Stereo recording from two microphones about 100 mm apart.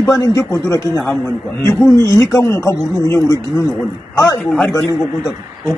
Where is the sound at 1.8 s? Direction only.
30° left (ahead or behind).